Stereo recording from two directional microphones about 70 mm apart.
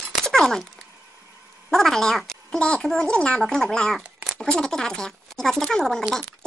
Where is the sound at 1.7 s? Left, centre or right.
Centre.